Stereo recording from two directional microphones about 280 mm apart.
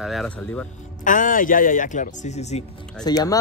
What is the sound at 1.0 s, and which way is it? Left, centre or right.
Speech, left.